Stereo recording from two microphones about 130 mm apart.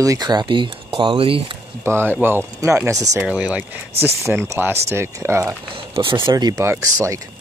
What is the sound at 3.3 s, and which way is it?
Speech, 10° right (ahead or behind).